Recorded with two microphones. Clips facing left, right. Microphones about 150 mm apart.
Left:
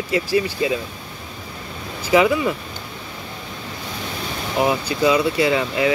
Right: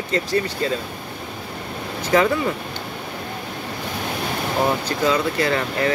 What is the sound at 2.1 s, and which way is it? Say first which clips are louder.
Speech: left 2 dB; 10° left (ahead or behind).